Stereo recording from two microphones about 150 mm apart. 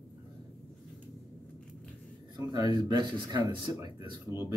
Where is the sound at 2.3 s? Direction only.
25° right (ahead or behind).